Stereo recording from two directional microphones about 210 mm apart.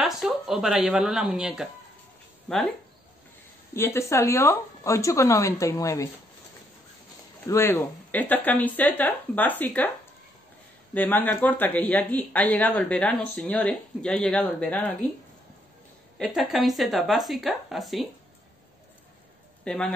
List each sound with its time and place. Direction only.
0.0 s speech: centre (ahead or behind)
3.7 s speech: 10° left (ahead or behind)
7.4 s speech: 15° left (ahead or behind)
11.0 s speech: 10° left (ahead or behind)
16.2 s speech: centre (ahead or behind)
19.6 s a man's voice: 5° left (ahead or behind)